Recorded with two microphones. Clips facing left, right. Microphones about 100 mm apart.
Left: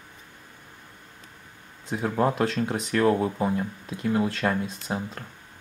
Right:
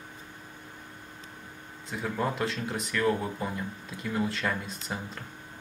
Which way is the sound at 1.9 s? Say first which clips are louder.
Left 6 dB; 40° left (ahead or behind).